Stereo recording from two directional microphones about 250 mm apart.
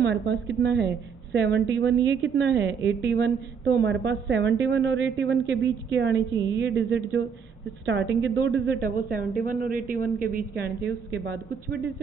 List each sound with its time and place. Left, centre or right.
0.0 s a woman's voice: right
9.4 s speech: right